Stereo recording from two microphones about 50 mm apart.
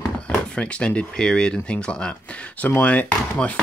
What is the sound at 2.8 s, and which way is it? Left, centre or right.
Speech, left.